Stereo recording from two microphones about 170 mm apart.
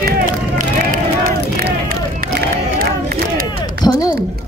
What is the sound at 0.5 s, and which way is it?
Run, 55° right (ahead or behind).